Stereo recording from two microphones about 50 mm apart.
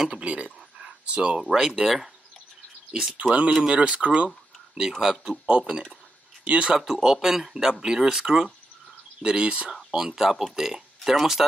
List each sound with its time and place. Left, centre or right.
0.2 s a sound: right
1.5 s speech: centre
3.2 s speech: right
4.7 s speech: centre
5.5 s speech: right
6.8 s speech: centre